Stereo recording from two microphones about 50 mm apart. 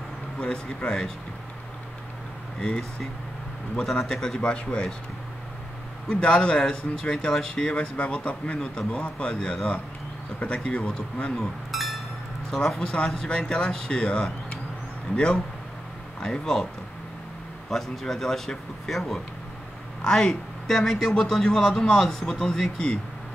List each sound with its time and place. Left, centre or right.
0.4 s a man's voice: centre
3.7 s a man's voice: centre
6.0 s a man's voice: centre
10.4 s speech: left
11.3 s a sound: centre
12.6 s a man's voice: centre
16.2 s a man's voice: centre
17.6 s a man's voice: centre